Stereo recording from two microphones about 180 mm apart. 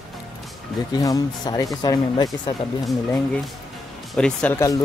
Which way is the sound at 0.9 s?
20° left (ahead or behind).